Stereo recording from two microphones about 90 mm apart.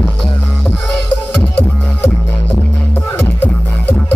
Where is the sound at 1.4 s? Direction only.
15° left (ahead or behind).